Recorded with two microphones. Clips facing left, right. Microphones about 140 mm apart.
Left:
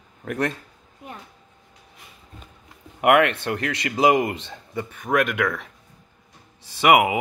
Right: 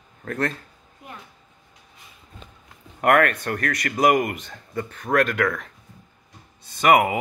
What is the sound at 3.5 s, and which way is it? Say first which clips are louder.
Speech: even; 20° left (ahead or behind).